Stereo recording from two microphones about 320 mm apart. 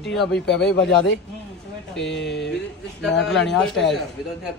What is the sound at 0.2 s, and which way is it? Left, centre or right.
Speech, centre.